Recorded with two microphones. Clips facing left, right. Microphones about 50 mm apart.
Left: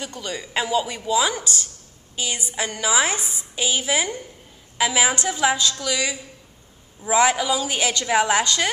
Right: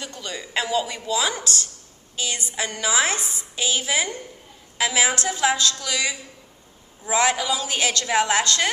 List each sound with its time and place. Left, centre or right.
0.0 s a woman's voice: centre